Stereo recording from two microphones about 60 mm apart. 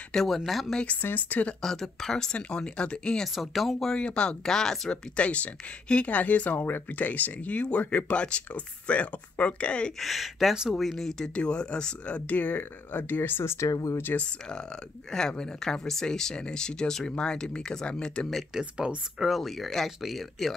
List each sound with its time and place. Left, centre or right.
0.1 s speech: centre
1.0 s speech: left
1.6 s speech: centre
3.3 s speech: centre
3.9 s speech: centre
9.9 s speech: centre
10.8 s speech: centre; by 13.7 s left
13.7 s speech: left
14.1 s speech: centre
18.5 s speech: centre